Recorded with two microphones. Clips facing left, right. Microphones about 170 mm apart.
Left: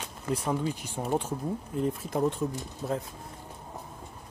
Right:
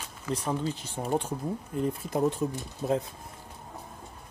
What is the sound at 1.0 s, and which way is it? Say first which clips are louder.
Speech: even; centre (ahead or behind).